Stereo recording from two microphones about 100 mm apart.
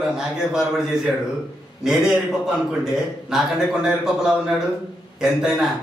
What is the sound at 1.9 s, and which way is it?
A man's voice, centre (ahead or behind).